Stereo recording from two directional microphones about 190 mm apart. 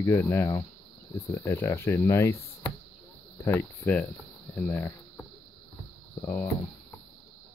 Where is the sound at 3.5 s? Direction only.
10° left (ahead or behind).